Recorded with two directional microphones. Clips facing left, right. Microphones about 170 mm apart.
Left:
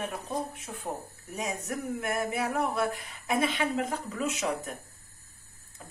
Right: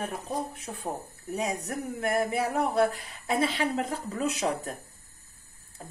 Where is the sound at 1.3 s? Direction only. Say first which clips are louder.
Right 3 dB; 35° right (ahead or behind).